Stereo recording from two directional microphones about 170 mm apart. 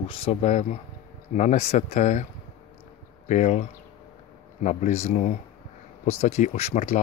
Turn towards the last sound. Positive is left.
turn(degrees=40)  # may be behind; listen again after turning